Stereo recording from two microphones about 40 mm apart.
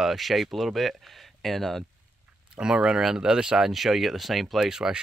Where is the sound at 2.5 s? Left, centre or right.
Right.